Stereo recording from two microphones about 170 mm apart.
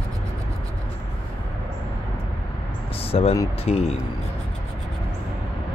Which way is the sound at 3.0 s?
35° left (ahead or behind).